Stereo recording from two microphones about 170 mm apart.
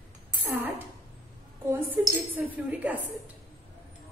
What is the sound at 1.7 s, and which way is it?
A woman's voice, 15° right (ahead or behind).